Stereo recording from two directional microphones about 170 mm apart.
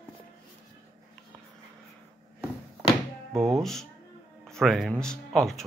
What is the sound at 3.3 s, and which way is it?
Speech, 20° right (ahead or behind).